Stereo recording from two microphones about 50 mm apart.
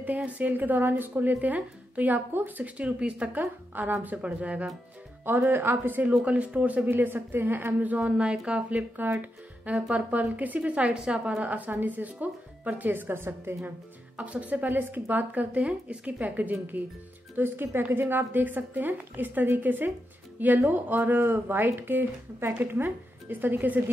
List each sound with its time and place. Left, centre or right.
0.0 s speech: right
2.8 s speech: right
3.3 s speech: right
4.2 s speech: right
5.5 s speech: right
6.1 s speech: right
6.9 s speech: right
8.0 s speech: right
10.9 s speech: centre; by 13.6 s right
13.7 s speech: right
15.5 s speech: right
17.4 s speech: right